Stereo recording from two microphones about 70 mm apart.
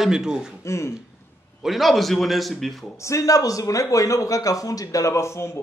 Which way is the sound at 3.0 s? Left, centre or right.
Left.